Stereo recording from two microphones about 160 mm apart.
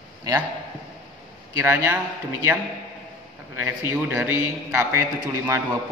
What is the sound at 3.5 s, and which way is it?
A man's voice, 10° right (ahead or behind).